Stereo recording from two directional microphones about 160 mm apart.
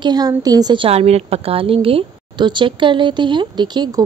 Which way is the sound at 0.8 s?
40° right (ahead or behind).